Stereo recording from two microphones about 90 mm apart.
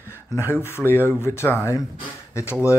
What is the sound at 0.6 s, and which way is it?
Speech, 25° left (ahead or behind).